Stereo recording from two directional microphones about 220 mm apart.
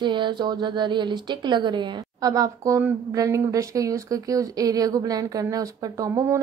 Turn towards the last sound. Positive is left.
turn(degrees=-15)  # may be behind; listen again after turning